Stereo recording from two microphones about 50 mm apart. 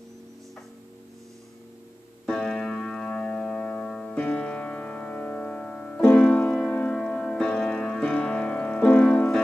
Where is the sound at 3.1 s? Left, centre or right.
Left.